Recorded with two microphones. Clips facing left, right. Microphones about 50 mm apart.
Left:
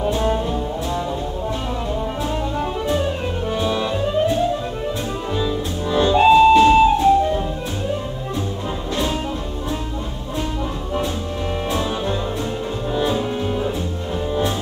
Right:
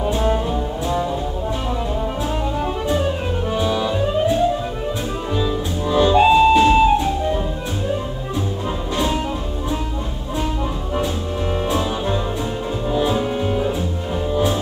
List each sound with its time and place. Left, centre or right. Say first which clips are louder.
0.0 s brass instrument: even; centre
3.5 s music: right 2 dB; centre
12.9 s music: right 1 dB; centre